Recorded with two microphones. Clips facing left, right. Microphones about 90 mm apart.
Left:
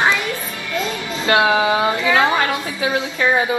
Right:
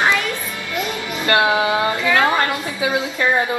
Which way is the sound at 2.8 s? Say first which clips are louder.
Even; 5° right (ahead or behind).